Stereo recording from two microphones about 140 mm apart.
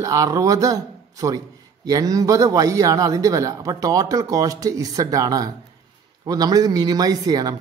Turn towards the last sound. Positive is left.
turn(degrees=-25)  # may be behind; listen again after turning